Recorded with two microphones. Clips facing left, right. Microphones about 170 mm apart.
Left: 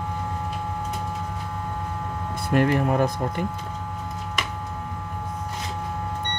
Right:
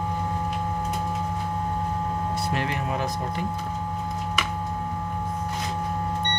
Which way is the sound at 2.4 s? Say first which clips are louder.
Left 7 dB; 50° left (ahead or behind).